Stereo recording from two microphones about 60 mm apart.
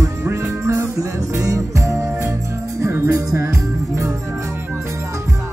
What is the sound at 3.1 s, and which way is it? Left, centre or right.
Music, right.